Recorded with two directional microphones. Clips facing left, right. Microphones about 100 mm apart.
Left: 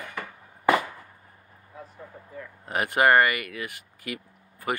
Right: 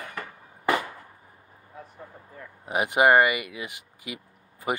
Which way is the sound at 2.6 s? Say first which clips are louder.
Right 1 dB; 15° right (ahead or behind).